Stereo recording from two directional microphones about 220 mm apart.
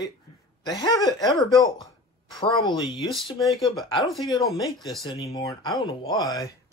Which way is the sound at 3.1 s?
Centre (ahead or behind).